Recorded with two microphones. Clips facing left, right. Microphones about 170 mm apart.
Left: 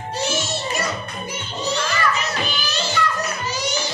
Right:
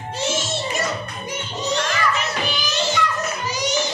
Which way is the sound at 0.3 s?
25° right (ahead or behind).